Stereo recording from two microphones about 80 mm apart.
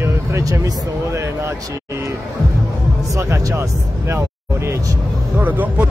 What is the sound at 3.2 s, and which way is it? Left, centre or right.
Speech, right.